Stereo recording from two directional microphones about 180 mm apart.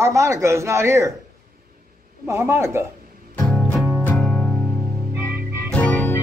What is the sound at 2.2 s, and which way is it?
Speech, 15° right (ahead or behind).